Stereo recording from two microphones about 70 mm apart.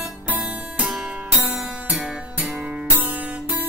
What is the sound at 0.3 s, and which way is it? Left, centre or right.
Music, centre.